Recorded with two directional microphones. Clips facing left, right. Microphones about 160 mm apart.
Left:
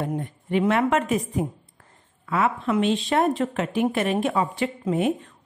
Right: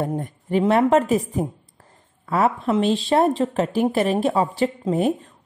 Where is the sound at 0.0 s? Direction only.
40° right (ahead or behind).